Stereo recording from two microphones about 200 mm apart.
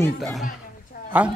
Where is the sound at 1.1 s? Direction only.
5° right (ahead or behind).